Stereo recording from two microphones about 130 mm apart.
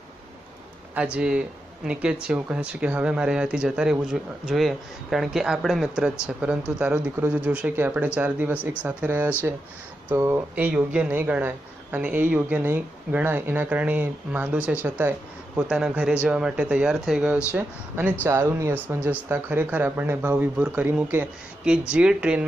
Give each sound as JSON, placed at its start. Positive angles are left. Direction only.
{"t": 0.9, "sound": "speech", "side_deg": -10}